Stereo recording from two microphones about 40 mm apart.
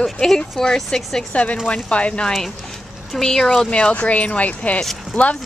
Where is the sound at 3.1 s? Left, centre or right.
Centre.